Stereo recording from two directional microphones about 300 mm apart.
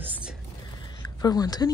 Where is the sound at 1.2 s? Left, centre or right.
Centre.